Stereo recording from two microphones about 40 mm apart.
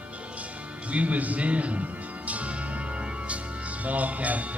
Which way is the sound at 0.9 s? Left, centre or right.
Right.